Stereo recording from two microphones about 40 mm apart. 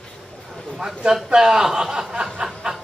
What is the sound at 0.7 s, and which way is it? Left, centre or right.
Chuckle, centre.